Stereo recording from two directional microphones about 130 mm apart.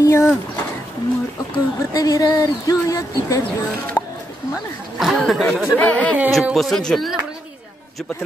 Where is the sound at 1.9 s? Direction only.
30° left (ahead or behind).